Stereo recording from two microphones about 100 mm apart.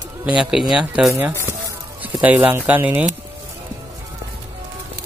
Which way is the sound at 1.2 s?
25° right (ahead or behind).